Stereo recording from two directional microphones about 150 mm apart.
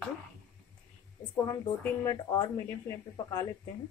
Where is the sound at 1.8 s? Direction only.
20° left (ahead or behind).